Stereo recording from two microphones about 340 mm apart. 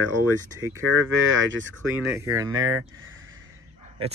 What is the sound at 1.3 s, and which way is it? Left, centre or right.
Speech, right.